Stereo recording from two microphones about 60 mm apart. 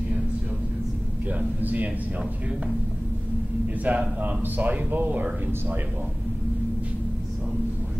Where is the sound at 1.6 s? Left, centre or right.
Right.